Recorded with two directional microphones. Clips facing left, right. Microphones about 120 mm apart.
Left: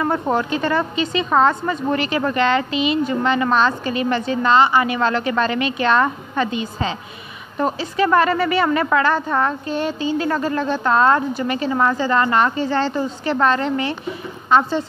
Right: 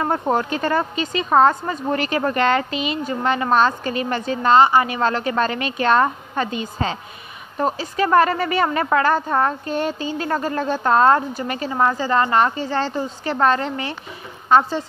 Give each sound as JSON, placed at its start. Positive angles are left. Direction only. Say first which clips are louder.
{"t": 0.0, "sound": "a woman's voice", "louder": "left 1 dB", "side_deg": -45}